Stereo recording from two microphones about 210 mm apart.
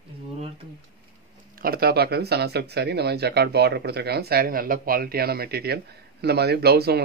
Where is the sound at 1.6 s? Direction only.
45° right (ahead or behind).